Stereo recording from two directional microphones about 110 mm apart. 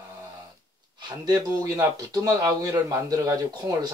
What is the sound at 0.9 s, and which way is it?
A man's voice, 40° right (ahead or behind).